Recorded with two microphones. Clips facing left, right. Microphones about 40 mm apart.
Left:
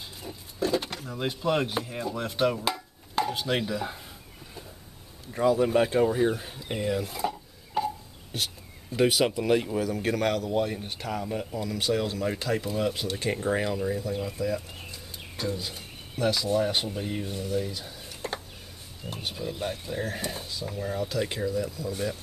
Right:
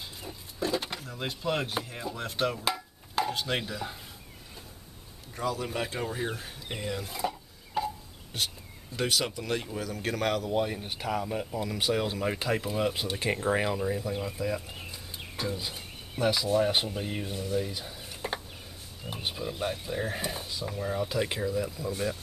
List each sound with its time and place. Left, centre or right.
0.2 s speech: centre
5.3 s speech: centre